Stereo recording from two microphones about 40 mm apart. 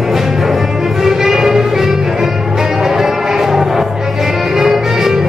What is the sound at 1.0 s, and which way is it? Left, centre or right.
Music, centre.